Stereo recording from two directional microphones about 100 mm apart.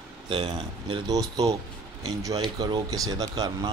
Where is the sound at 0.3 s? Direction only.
55° right (ahead or behind).